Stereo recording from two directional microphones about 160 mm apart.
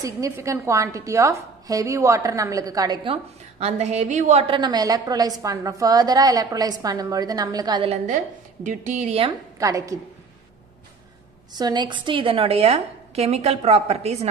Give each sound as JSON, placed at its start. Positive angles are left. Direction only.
{"t": 0.0, "sound": "a woman's voice", "side_deg": -20}
{"t": 4.6, "sound": "a woman's voice", "side_deg": -25}
{"t": 8.6, "sound": "a woman's voice", "side_deg": -50}
{"t": 9.6, "sound": "a woman's voice", "side_deg": -20}
{"t": 11.5, "sound": "a woman's voice", "side_deg": -25}